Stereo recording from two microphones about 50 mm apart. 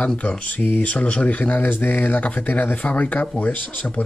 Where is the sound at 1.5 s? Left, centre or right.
Left.